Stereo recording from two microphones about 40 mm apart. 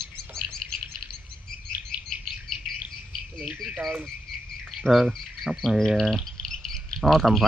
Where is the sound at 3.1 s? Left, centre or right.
Centre.